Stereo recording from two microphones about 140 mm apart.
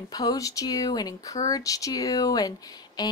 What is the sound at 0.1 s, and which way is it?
Speech, 25° left (ahead or behind).